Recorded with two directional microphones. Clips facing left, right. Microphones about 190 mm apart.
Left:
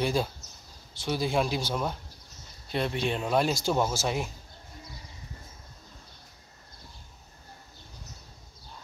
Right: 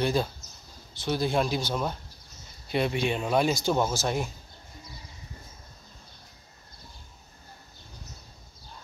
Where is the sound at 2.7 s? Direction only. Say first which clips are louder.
Right 2 dB; 5° right (ahead or behind).